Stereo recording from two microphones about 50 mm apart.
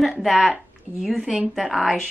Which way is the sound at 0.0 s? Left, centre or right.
Centre.